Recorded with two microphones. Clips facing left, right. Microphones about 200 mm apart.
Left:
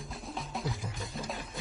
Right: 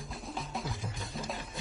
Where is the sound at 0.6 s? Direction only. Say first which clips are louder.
Left 2 dB; centre (ahead or behind).